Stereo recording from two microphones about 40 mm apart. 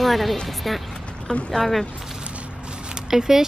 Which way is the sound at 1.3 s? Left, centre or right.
Left.